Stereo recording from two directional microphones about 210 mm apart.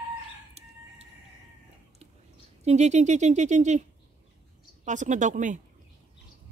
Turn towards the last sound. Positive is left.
turn(degrees=-35)  # may be behind; listen again after turning